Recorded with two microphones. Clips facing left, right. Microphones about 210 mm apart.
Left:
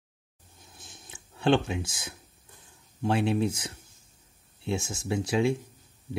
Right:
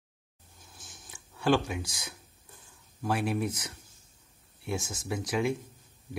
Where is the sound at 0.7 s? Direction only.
20° left (ahead or behind).